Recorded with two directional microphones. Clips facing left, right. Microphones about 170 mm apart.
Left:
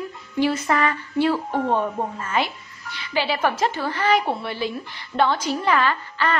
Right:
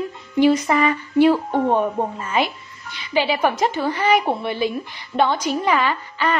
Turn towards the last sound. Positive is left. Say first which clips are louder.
# right 1 dB
turn(degrees=-15)  # may be behind; listen again after turning